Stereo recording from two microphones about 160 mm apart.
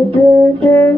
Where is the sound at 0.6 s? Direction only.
15° left (ahead or behind).